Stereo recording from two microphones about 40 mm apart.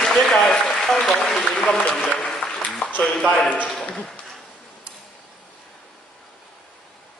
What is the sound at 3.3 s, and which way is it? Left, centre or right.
Speech, left.